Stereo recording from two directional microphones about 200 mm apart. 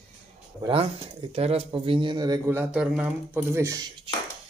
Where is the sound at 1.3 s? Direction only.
30° right (ahead or behind).